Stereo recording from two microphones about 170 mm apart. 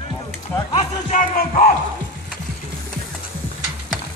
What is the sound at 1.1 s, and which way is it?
Music, 55° left (ahead or behind).